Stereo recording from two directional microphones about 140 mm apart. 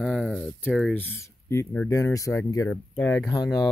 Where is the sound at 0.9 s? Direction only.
15° left (ahead or behind).